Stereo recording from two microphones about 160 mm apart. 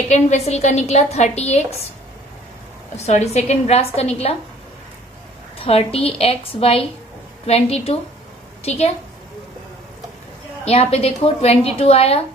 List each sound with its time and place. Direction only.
0.1 s a woman's voice: 45° left (ahead or behind)
3.0 s a woman's voice: 45° left (ahead or behind)
5.6 s a woman's voice: 40° left (ahead or behind)
10.6 s a woman's voice: 40° left (ahead or behind)